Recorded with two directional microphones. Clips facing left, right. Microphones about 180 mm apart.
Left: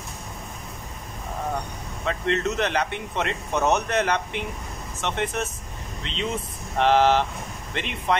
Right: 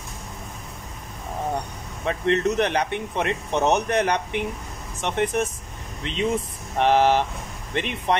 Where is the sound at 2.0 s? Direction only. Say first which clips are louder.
Right 3 dB; 15° right (ahead or behind).